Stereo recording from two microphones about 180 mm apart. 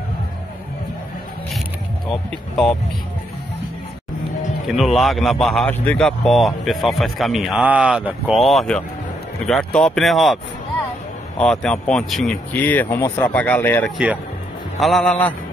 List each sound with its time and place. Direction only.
2.0 s speech: 5° left (ahead or behind)
4.7 s speech: centre (ahead or behind)